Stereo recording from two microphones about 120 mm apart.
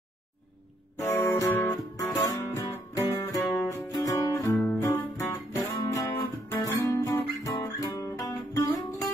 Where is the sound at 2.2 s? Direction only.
30° left (ahead or behind).